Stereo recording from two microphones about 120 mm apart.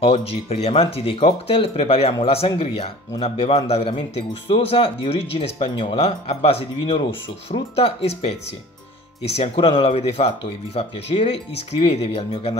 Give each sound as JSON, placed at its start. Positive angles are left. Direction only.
{"t": 0.0, "sound": "speech", "side_deg": 50}
{"t": 6.8, "sound": "speech", "side_deg": 45}
{"t": 9.8, "sound": "speech", "side_deg": 60}